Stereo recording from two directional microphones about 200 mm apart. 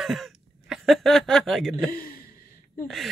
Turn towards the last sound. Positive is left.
turn(degrees=0)  # may be behind; listen again after turning